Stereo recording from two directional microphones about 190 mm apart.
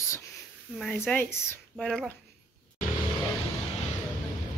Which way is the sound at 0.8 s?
5° left (ahead or behind).